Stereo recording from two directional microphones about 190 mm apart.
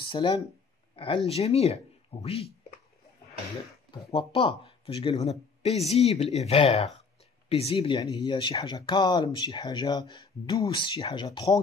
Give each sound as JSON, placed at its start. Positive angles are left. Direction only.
{"t": 0.0, "sound": "speech", "side_deg": 25}
{"t": 4.1, "sound": "speech", "side_deg": 30}